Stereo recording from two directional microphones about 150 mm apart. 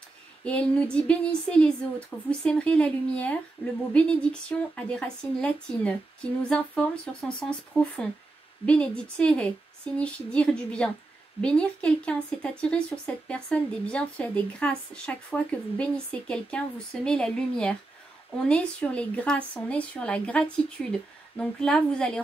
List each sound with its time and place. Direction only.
0.5 s speech: 10° left (ahead or behind)